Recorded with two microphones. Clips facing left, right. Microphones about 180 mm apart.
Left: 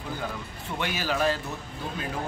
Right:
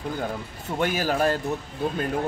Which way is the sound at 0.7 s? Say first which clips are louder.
Right 5 dB; 45° right (ahead or behind).